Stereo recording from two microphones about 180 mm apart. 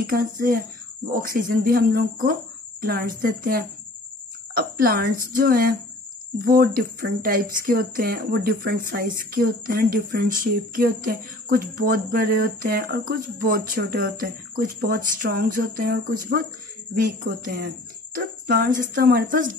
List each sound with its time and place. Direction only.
0.0 s speech: 50° right (ahead or behind)